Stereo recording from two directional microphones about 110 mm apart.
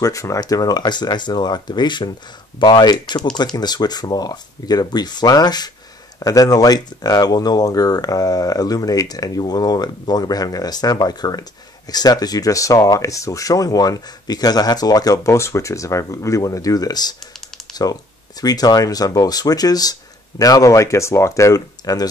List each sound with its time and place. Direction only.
0.0 s speech: 30° left (ahead or behind)